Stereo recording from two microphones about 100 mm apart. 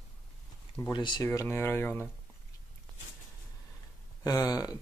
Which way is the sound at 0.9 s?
50° left (ahead or behind).